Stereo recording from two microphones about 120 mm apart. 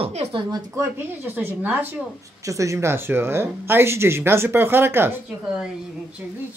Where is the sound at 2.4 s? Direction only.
25° right (ahead or behind).